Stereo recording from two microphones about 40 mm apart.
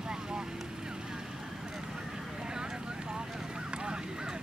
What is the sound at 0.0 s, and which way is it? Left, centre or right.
Vehicle, centre.